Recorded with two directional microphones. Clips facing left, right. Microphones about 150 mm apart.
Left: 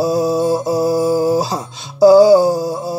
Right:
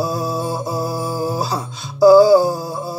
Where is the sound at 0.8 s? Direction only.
20° left (ahead or behind).